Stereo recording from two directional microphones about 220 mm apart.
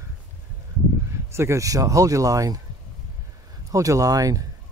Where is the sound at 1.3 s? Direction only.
10° right (ahead or behind).